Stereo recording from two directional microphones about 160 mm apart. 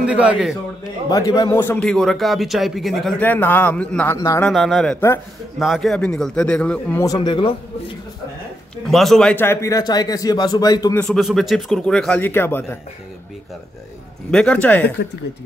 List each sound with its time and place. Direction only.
0.0 s a man's voice: 5° right (ahead or behind)
1.1 s speech: 20° left (ahead or behind)
4.5 s speech: centre (ahead or behind)
7.1 s speech: 30° left (ahead or behind)
8.8 s speech: centre (ahead or behind); by 11.0 s 25° left (ahead or behind)
11.0 s speech: centre (ahead or behind)
14.3 s speech: 5° left (ahead or behind)